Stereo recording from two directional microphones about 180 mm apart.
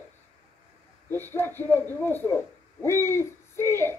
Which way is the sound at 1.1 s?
10° left (ahead or behind).